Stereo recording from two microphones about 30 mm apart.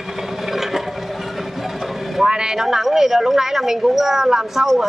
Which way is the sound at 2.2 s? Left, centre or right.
Right.